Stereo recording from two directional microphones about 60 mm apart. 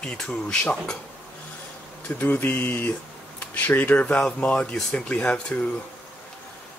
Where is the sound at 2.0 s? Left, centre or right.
Left.